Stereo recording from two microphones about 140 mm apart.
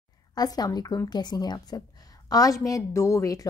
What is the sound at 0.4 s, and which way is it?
A woman's voice, 25° left (ahead or behind).